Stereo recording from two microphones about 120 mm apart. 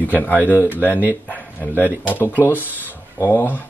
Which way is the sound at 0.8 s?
15° left (ahead or behind).